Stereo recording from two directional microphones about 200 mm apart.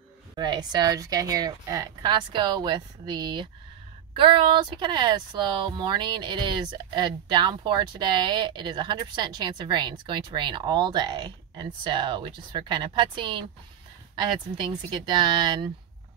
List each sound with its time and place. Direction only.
0.4 s speech: 20° right (ahead or behind)